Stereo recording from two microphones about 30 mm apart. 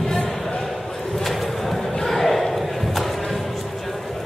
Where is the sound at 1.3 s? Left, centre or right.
Centre.